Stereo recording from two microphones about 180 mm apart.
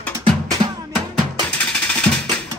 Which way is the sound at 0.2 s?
25° right (ahead or behind).